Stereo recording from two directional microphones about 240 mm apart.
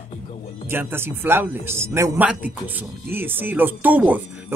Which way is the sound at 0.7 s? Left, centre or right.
Centre.